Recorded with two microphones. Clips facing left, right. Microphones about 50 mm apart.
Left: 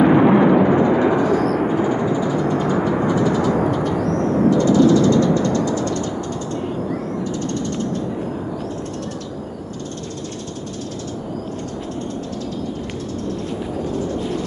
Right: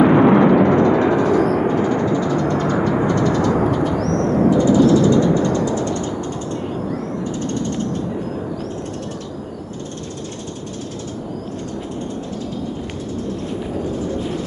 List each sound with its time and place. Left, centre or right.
0.0 s vehicle: centre
1.7 s a sound: centre
2.9 s vehicle: centre
4.0 s bird: centre
4.4 s a sound: centre
5.7 s music: right